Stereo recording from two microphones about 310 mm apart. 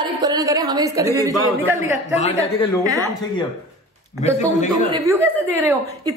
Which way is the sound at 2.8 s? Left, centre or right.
Centre.